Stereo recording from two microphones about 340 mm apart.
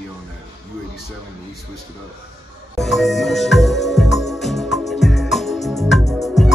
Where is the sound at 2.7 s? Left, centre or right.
Centre.